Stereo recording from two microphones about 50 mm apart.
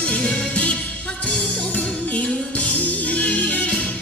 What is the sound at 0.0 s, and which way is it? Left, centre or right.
Music, left.